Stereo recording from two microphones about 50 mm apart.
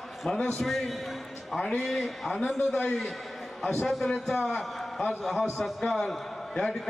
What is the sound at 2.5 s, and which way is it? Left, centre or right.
Speech, left.